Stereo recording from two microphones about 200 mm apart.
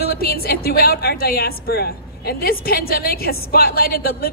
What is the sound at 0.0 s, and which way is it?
A woman's voice, 50° left (ahead or behind).